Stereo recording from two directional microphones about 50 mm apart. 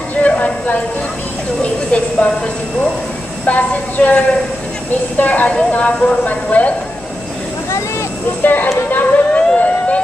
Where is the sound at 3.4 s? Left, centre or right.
Left.